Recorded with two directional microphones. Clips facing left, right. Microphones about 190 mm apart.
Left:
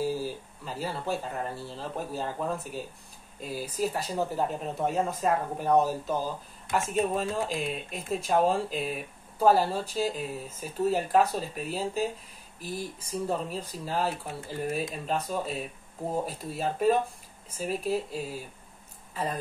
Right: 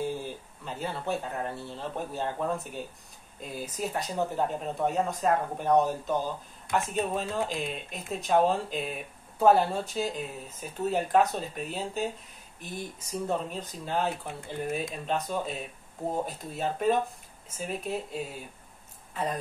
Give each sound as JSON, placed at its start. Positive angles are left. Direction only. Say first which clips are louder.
{"t": 0.0, "sound": "speech", "louder": "left 3 dB", "side_deg": 5}
{"t": 3.3, "sound": "speech", "louder": "left 4 dB", "side_deg": 0}